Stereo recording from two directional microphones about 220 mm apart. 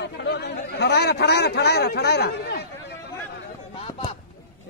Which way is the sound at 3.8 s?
25° left (ahead or behind).